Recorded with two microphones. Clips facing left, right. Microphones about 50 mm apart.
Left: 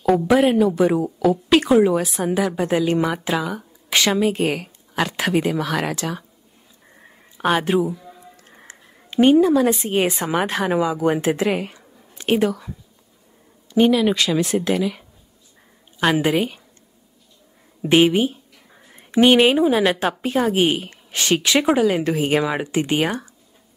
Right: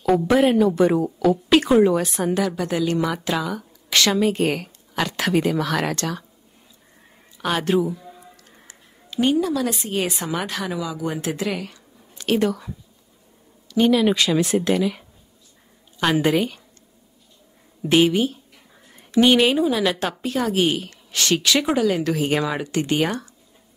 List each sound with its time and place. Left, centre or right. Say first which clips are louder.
0.1 s a woman's voice: left 1 dB; centre
4.2 s speech: even; centre
7.5 s a woman's voice: right 1 dB; centre
8.4 s speech: left 4 dB; left
12.4 s speech: right 1 dB; centre
13.8 s a woman's voice: right 1 dB; centre
17.8 s a woman's voice: left 2 dB; left